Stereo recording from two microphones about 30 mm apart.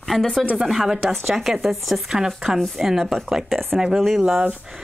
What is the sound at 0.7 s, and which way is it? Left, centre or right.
Speech, centre.